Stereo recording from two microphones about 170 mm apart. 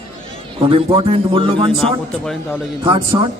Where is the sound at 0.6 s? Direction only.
35° right (ahead or behind).